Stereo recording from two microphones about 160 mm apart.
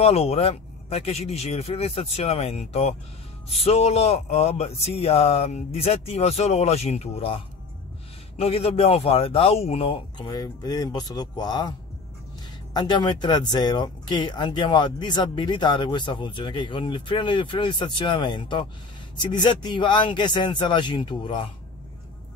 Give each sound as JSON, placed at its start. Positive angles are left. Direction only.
{"t": 0.0, "sound": "speech", "side_deg": 40}
{"t": 12.7, "sound": "speech", "side_deg": 25}